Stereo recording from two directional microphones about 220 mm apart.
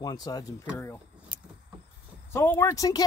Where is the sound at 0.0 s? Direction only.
15° left (ahead or behind).